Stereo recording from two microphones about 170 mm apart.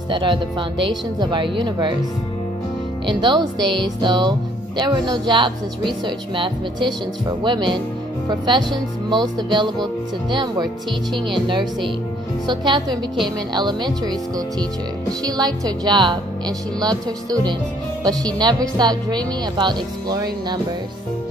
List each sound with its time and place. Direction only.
0.1 s speech: 30° right (ahead or behind)
3.1 s speech: 25° right (ahead or behind)